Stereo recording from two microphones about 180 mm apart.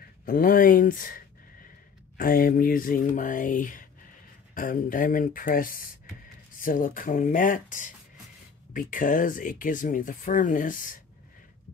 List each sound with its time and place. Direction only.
0.2 s speech: 50° left (ahead or behind)
8.9 s speech: 50° left (ahead or behind)